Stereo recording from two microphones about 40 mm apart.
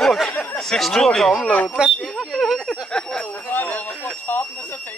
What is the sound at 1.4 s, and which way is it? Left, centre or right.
Speech, left.